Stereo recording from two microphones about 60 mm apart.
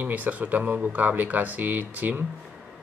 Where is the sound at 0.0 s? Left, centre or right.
Right.